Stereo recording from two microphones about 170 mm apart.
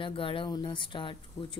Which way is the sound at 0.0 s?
30° left (ahead or behind).